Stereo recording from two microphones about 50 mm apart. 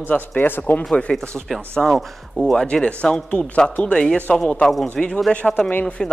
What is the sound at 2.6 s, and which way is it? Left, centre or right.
A man's voice, centre.